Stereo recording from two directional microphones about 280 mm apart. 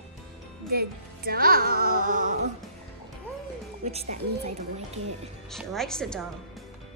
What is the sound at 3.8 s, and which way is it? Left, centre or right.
Speech, right.